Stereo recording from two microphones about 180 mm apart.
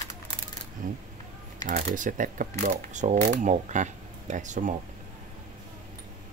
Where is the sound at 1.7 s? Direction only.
45° right (ahead or behind).